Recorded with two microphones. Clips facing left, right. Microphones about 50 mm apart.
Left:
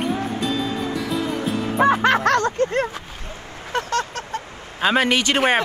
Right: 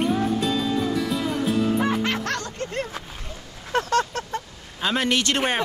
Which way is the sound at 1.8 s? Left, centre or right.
Left.